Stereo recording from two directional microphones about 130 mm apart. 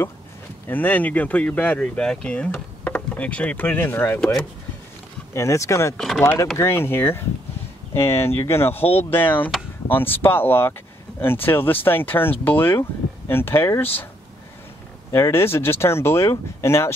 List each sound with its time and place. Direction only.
0.7 s speech: 15° left (ahead or behind)
4.2 s speech: 5° left (ahead or behind)
5.3 s speech: 20° left (ahead or behind)
15.0 s speech: 25° left (ahead or behind)